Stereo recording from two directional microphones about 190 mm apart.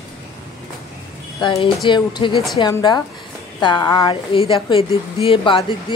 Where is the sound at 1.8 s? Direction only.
25° left (ahead or behind).